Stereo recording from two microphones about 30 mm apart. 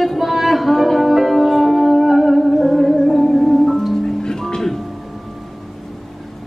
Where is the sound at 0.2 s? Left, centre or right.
Centre.